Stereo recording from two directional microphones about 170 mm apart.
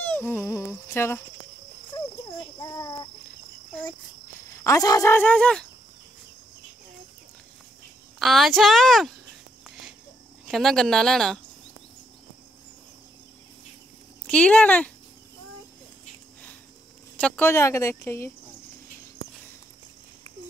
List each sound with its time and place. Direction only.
0.0 s dog: 10° left (ahead or behind)
2.6 s a sound: 25° left (ahead or behind)
4.6 s speech: 20° left (ahead or behind)
8.2 s a woman's voice: centre (ahead or behind)
10.5 s a woman's voice: centre (ahead or behind)
14.2 s speech: 5° left (ahead or behind)
17.2 s speech: 15° left (ahead or behind)